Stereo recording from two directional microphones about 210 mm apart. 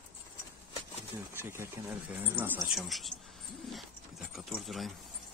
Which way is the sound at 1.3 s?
10° right (ahead or behind).